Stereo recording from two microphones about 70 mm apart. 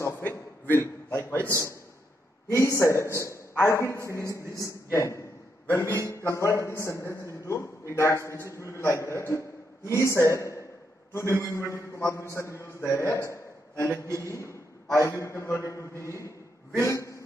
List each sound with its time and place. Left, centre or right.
0.2 s a sound: left
1.5 s a man's voice: left
5.7 s a man's voice: left
6.0 s a man's voice: left